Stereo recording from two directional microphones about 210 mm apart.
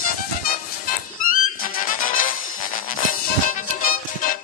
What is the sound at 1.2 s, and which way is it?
Music, 40° left (ahead or behind).